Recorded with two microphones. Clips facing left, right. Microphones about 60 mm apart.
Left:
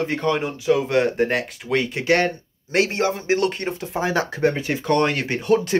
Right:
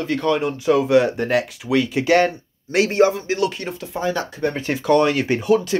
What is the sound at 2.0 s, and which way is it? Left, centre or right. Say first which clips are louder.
Speech: right 4 dB; centre.